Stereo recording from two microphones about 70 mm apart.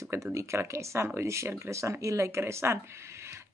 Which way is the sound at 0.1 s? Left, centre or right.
Right.